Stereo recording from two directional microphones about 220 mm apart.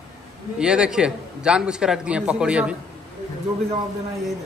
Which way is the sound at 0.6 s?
5° right (ahead or behind).